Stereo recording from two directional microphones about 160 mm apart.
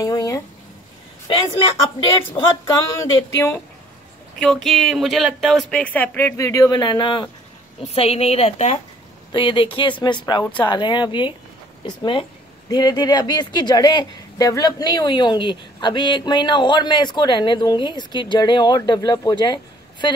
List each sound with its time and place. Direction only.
0.0 s a sound: 25° left (ahead or behind)
2.3 s speech: 20° left (ahead or behind)
4.4 s speech: centre (ahead or behind); by 7.2 s 30° left (ahead or behind)
7.8 s speech: 40° left (ahead or behind)
9.3 s speech: 30° left (ahead or behind)